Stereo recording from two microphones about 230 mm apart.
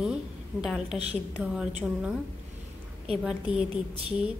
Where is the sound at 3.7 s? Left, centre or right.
Right.